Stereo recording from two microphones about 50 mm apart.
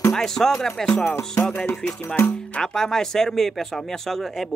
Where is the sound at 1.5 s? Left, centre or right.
Left.